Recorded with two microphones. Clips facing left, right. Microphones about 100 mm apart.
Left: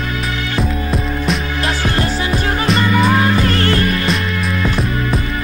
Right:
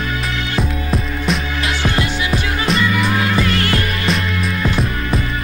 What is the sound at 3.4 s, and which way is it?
Music, 35° left (ahead or behind).